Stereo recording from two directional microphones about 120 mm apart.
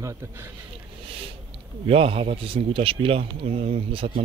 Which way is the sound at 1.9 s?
50° right (ahead or behind).